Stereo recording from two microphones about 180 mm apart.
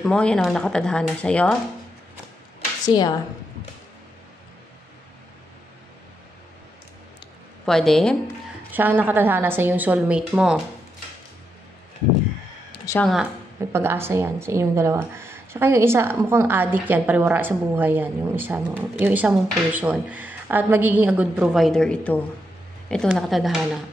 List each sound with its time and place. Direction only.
0.0 s speech: 5° left (ahead or behind)
2.8 s speech: 25° left (ahead or behind)
7.6 s speech: centre (ahead or behind)
8.7 s speech: 10° right (ahead or behind)
13.0 s speech: centre (ahead or behind)
13.6 s speech: 15° right (ahead or behind)